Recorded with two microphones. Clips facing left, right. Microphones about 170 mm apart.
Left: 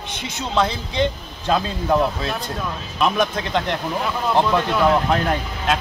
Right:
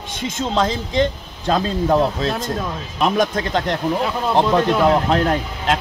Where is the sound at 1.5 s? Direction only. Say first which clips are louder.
Right 2 dB; 30° right (ahead or behind).